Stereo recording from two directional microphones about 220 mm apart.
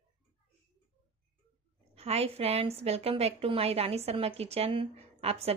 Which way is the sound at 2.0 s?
30° right (ahead or behind).